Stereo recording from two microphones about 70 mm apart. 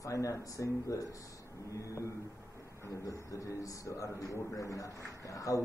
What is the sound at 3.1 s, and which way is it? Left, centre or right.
A man's voice, left.